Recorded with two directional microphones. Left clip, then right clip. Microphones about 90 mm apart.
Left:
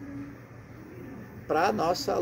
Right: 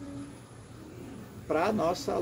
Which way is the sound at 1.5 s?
15° right (ahead or behind).